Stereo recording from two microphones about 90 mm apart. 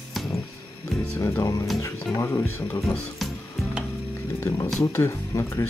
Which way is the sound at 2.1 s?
25° left (ahead or behind).